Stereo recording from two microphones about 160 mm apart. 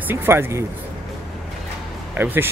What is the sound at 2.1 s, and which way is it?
Speech, 15° right (ahead or behind).